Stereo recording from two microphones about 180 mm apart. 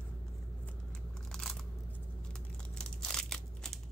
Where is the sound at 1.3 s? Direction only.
5° left (ahead or behind).